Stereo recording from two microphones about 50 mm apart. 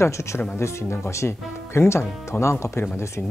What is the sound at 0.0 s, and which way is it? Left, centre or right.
Speech, left.